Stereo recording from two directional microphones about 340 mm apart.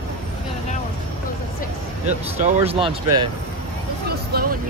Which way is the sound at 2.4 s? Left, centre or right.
Centre.